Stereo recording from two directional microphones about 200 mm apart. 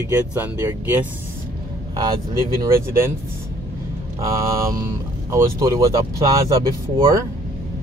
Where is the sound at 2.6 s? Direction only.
15° right (ahead or behind).